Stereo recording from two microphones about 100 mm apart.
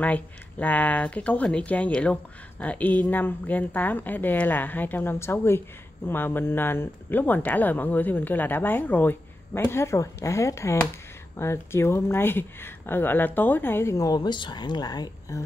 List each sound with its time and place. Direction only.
0.0 s a woman's voice: 15° left (ahead or behind); by 15.4 s 40° left (ahead or behind)